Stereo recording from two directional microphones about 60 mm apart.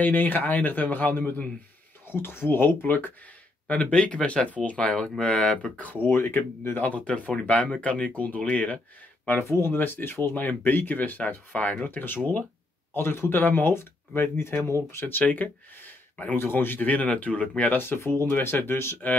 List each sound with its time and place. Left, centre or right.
0.0 s speech: left
2.0 s speech: left
3.6 s speech: left
6.0 s speech: left
9.5 s speech: left
17.7 s speech: left